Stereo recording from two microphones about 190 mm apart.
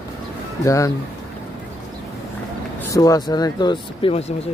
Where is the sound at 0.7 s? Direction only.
15° left (ahead or behind).